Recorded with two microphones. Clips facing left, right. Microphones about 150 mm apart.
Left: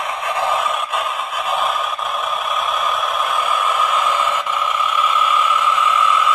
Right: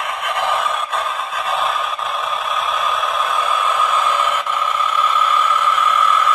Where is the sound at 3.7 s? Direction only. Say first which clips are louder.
Even; 10° left (ahead or behind).